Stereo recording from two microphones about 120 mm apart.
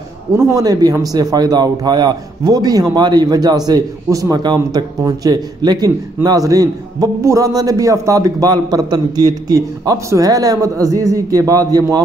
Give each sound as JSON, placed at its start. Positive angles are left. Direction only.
{"t": 0.4, "sound": "a man's voice", "side_deg": -25}